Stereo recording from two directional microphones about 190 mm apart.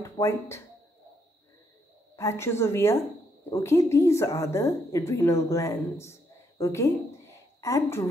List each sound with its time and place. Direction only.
0.0 s speech: 15° left (ahead or behind)
2.1 s a woman's voice: 15° left (ahead or behind)